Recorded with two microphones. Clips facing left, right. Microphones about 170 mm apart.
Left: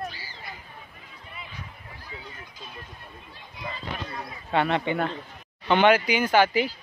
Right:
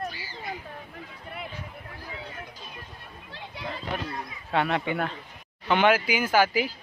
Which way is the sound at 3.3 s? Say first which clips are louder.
Right 2 dB; 75° right (ahead or behind).